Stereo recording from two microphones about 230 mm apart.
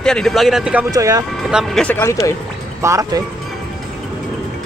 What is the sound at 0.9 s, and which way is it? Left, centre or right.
Speech, centre.